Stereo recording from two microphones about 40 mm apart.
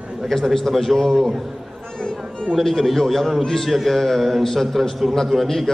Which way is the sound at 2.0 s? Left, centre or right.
Left.